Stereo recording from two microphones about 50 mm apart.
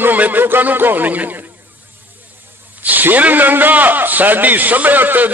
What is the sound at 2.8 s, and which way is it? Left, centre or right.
A man's voice, right.